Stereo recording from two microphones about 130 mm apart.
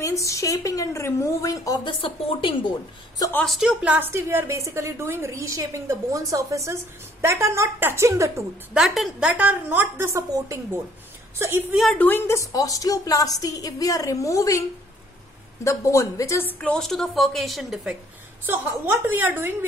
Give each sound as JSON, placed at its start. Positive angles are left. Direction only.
{"t": 0.0, "sound": "a woman's voice", "side_deg": 25}
{"t": 1.9, "sound": "a woman's voice", "side_deg": 45}
{"t": 3.4, "sound": "a woman's voice", "side_deg": -5}
{"t": 8.7, "sound": "a woman's voice", "side_deg": 0}
{"t": 9.4, "sound": "a woman's voice", "side_deg": -15}
{"t": 11.7, "sound": "a woman's voice", "side_deg": 0}
{"t": 12.0, "sound": "a woman's voice", "side_deg": 15}
{"t": 15.6, "sound": "a woman's voice", "side_deg": 25}
{"t": 16.6, "sound": "a woman's voice", "side_deg": 5}
{"t": 19.0, "sound": "a woman's voice", "side_deg": -15}